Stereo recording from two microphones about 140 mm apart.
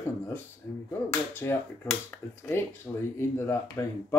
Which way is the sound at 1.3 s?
15° left (ahead or behind).